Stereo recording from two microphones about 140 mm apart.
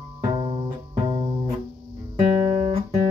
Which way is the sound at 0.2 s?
35° right (ahead or behind).